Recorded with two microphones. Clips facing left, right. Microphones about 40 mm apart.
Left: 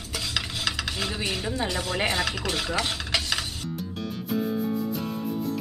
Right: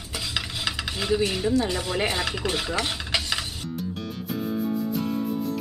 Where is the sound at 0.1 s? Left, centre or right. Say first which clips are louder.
Even; centre.